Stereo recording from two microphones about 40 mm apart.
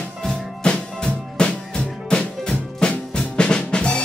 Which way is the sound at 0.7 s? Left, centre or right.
Left.